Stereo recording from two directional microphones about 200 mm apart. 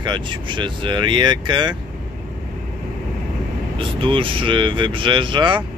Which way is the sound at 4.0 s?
25° right (ahead or behind).